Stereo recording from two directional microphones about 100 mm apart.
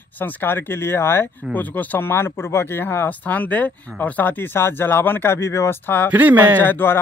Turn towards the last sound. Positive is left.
turn(degrees=20)  # may be behind; listen again after turning